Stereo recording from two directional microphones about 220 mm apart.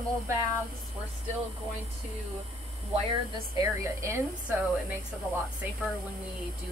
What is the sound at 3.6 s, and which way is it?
A woman's voice, 15° right (ahead or behind).